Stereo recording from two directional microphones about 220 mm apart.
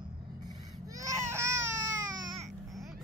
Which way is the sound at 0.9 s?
15° right (ahead or behind).